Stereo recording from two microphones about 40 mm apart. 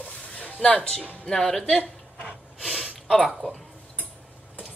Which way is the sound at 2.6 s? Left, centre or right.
Centre.